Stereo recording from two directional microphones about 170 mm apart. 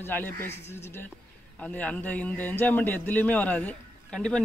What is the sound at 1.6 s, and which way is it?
Speech, 5° left (ahead or behind).